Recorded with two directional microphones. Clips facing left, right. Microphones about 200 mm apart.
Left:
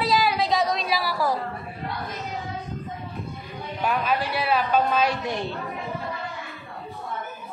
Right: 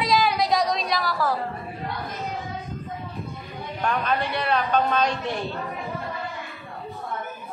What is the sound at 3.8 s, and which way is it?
A woman's voice, 5° left (ahead or behind).